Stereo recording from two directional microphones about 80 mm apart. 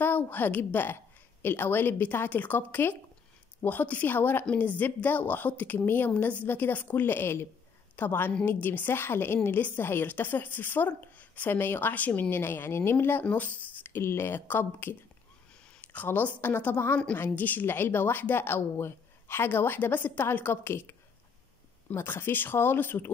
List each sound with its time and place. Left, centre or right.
0.0 s a woman's voice: left
21.9 s a woman's voice: left